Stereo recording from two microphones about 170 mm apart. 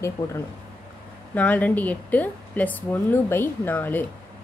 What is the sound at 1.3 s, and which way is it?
A woman's voice, 10° left (ahead or behind).